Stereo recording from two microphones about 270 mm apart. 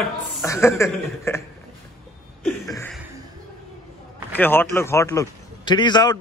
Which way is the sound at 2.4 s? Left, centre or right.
Centre.